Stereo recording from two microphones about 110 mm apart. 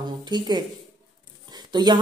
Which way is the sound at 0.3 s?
40° right (ahead or behind).